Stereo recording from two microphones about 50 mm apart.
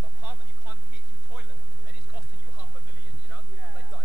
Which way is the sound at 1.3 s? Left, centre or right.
Right.